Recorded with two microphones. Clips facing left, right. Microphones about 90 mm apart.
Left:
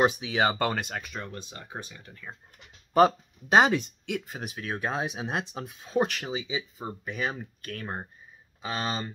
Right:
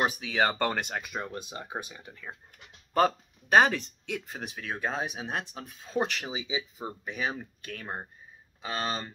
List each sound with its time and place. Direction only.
0.0 s speech: 15° left (ahead or behind); by 2.3 s 10° right (ahead or behind)
2.9 s speech: 15° left (ahead or behind)
4.1 s speech: 5° left (ahead or behind)
6.2 s speech: 5° right (ahead or behind)